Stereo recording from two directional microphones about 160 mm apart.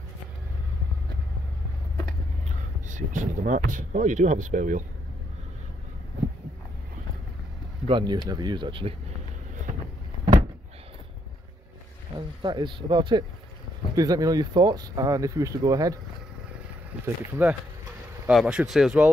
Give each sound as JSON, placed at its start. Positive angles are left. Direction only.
{"t": 2.9, "sound": "speech", "side_deg": -55}
{"t": 7.9, "sound": "speech", "side_deg": -25}
{"t": 12.4, "sound": "speech", "side_deg": -30}
{"t": 17.0, "sound": "speech", "side_deg": -10}